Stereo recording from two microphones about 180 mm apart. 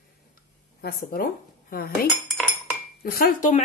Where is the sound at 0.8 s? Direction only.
55° left (ahead or behind).